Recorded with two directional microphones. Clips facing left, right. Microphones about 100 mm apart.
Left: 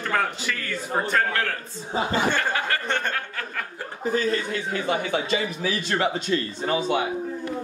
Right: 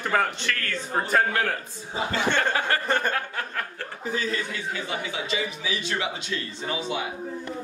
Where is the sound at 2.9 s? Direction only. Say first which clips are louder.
Right 2 dB; 5° right (ahead or behind).